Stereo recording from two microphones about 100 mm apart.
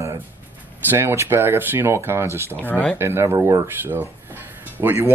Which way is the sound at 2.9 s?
25° right (ahead or behind).